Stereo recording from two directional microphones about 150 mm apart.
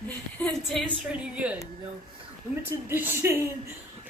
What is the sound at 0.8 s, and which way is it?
Speech, 5° right (ahead or behind).